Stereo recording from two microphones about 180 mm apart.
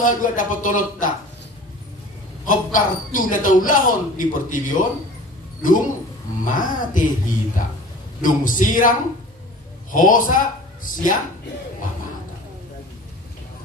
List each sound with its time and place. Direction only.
0.0 s a man's voice: 50° left (ahead or behind)
2.4 s a man's voice: 50° left (ahead or behind)
9.9 s a man's voice: 50° left (ahead or behind)